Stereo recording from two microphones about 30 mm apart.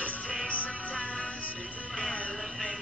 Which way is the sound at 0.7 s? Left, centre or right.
Left.